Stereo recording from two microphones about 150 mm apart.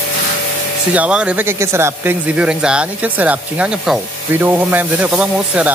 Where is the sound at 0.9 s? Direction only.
10° right (ahead or behind).